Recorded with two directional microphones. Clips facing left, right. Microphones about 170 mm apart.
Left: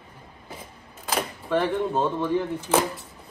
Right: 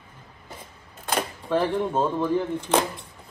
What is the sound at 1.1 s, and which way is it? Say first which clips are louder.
Speech: right 1 dB; centre (ahead or behind).